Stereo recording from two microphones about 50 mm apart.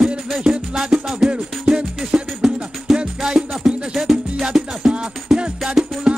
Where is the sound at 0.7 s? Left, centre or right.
Centre.